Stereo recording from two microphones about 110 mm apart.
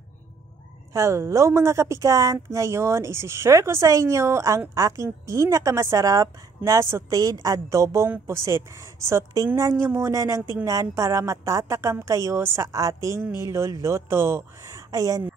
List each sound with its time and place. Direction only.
0.9 s a woman's voice: 25° right (ahead or behind)